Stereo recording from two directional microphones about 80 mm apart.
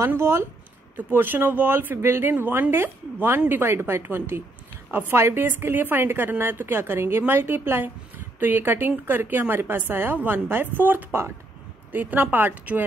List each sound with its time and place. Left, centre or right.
0.0 s speech: right
0.9 s a woman's voice: right